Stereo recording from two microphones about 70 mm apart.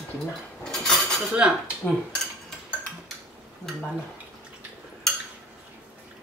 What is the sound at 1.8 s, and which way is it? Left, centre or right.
Speech, left.